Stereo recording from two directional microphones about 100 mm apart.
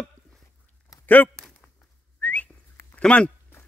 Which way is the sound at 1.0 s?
20° left (ahead or behind).